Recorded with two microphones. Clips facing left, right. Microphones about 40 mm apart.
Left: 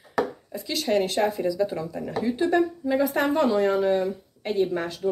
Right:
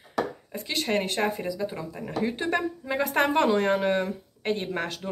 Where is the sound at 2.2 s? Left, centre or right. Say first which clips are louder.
Left 4 dB; right.